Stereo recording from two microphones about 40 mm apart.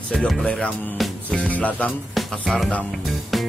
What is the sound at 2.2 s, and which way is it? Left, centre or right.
Music, centre.